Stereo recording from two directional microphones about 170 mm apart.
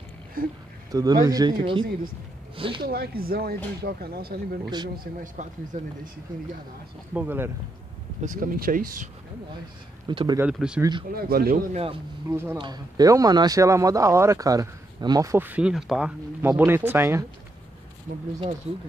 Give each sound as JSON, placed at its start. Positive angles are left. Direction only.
{"t": 0.4, "sound": "speech", "side_deg": -60}
{"t": 0.9, "sound": "speech", "side_deg": -20}
{"t": 2.8, "sound": "speech", "side_deg": -65}
{"t": 4.9, "sound": "speech", "side_deg": -55}
{"t": 7.2, "sound": "speech", "side_deg": -10}
{"t": 8.2, "sound": "speech", "side_deg": -50}
{"t": 10.0, "sound": "speech", "side_deg": -25}
{"t": 10.4, "sound": "speech", "side_deg": -5}
{"t": 10.8, "sound": "speech", "side_deg": -25}
{"t": 11.1, "sound": "speech", "side_deg": -60}
{"t": 11.7, "sound": "speech", "side_deg": -35}
{"t": 12.3, "sound": "speech", "side_deg": -15}
{"t": 12.5, "sound": "speech", "side_deg": -25}